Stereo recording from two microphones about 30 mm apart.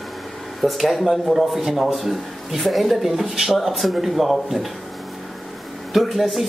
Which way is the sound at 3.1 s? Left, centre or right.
Centre.